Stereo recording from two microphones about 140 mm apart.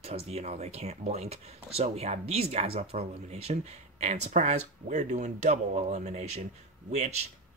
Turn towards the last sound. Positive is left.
turn(degrees=-55)  # may be behind; listen again after turning